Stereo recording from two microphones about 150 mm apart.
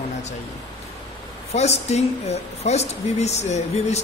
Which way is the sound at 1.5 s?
45° left (ahead or behind).